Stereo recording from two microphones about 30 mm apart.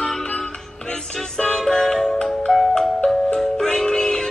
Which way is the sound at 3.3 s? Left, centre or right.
Left.